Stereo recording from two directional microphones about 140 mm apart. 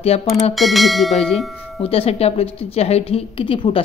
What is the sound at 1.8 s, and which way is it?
A woman's voice, 45° left (ahead or behind).